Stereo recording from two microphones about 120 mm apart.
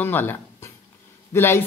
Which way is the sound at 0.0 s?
15° left (ahead or behind).